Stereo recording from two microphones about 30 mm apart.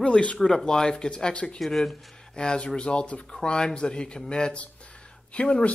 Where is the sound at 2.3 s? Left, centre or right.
Left.